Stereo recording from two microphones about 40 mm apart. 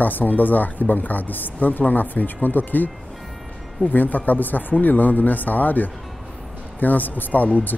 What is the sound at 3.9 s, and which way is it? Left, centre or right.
Speech, left.